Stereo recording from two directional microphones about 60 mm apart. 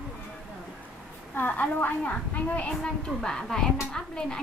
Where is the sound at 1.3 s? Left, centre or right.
Left; by 4.4 s centre.